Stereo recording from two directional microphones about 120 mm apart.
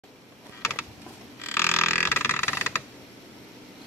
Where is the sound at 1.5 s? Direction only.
20° left (ahead or behind).